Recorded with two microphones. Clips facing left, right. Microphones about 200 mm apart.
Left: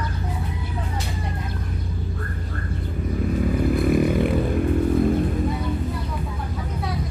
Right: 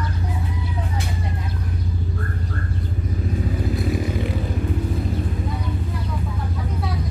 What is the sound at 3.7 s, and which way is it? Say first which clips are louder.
Chainsaw: left 7 dB; 55° left (ahead or behind).